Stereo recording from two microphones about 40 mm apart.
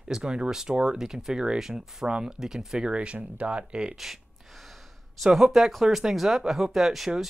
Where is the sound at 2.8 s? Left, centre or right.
Right.